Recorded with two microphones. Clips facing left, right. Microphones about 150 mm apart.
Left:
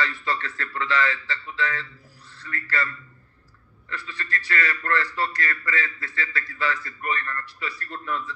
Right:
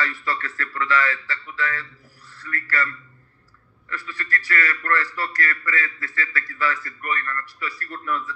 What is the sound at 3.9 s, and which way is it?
A man's voice, 20° left (ahead or behind).